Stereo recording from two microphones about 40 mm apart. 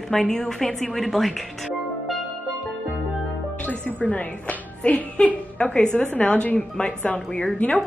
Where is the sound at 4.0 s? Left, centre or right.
Left.